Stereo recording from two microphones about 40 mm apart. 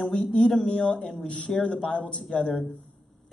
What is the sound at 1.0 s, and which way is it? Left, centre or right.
Speech, centre.